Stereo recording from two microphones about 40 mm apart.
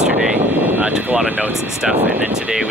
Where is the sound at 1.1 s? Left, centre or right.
Right.